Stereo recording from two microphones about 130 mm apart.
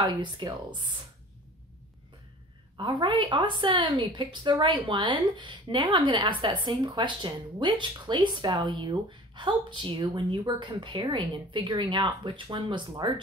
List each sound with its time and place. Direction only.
0.0 s a woman's voice: 35° right (ahead or behind)
2.8 s a woman's voice: 35° right (ahead or behind)